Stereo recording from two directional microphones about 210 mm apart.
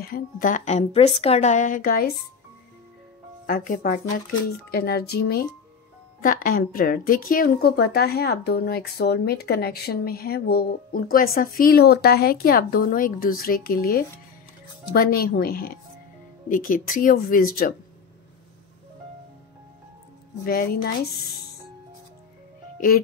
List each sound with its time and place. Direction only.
0.0 s speech: 40° left (ahead or behind)
3.4 s speech: 40° left (ahead or behind)
20.4 s speech: 45° left (ahead or behind)